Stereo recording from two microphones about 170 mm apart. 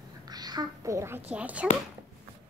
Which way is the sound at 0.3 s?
25° right (ahead or behind).